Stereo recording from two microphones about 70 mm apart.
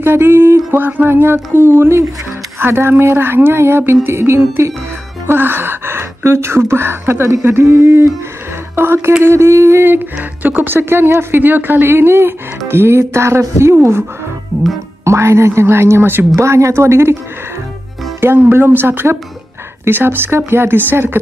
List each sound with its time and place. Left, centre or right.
0.0 s speech: right
16.3 s speech: right
18.2 s speech: right